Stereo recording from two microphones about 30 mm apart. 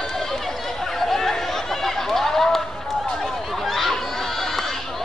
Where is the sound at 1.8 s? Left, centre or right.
Centre.